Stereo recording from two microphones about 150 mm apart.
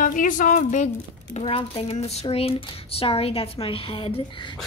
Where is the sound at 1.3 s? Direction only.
40° left (ahead or behind).